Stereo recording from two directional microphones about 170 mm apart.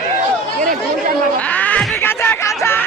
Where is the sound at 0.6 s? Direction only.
50° right (ahead or behind).